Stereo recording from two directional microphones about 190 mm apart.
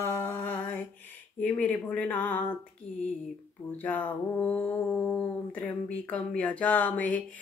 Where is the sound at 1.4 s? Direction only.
10° left (ahead or behind).